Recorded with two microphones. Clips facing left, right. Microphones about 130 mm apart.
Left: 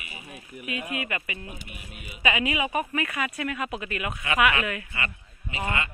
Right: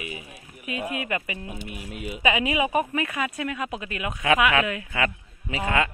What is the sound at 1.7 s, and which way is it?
Speech, 90° right.